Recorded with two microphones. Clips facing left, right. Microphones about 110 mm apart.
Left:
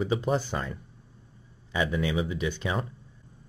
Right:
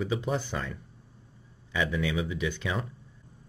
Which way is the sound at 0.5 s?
25° left (ahead or behind).